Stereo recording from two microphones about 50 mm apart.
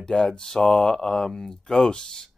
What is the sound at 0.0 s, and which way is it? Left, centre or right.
Speech, centre.